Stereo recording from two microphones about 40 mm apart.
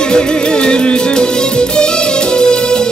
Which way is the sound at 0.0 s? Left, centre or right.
Left.